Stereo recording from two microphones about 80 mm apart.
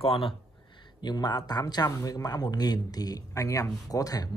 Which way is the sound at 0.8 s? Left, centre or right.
Left.